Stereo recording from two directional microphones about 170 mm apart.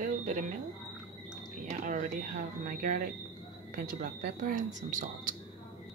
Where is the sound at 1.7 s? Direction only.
50° right (ahead or behind).